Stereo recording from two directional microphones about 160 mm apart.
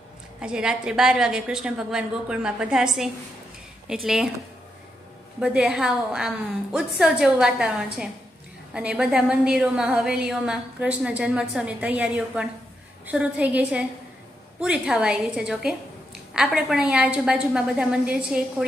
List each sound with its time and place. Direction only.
0.4 s a woman's voice: 5° right (ahead or behind)
5.4 s a woman's voice: 5° right (ahead or behind)